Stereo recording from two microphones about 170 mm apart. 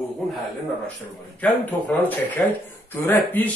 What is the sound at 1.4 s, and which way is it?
Speech, 10° left (ahead or behind).